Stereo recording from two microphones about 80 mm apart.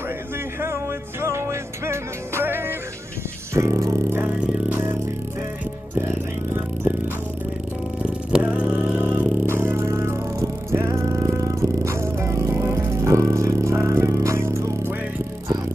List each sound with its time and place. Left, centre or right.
0.6 s music: right
3.5 s music: right
4.1 s music: right
4.4 s music: centre
5.9 s music: right
8.0 s music: centre
9.5 s music: right